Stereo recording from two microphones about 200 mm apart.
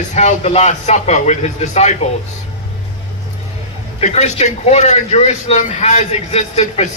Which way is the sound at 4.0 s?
35° left (ahead or behind).